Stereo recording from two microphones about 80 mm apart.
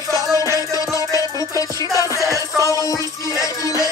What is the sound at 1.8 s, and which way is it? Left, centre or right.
Music, right.